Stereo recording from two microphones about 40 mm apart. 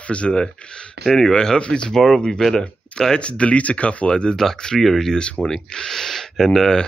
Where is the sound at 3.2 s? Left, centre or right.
Left.